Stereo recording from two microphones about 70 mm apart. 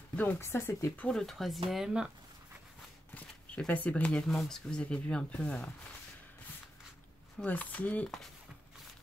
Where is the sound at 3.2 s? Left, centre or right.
Centre.